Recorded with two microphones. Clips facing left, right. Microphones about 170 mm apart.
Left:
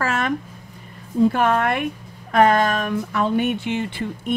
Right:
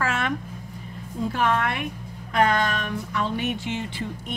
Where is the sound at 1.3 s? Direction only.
55° left (ahead or behind).